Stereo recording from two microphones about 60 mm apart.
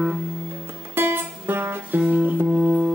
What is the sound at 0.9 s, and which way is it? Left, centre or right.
Music, right.